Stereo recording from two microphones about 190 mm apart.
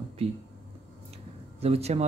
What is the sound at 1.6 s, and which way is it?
Speech, 35° right (ahead or behind).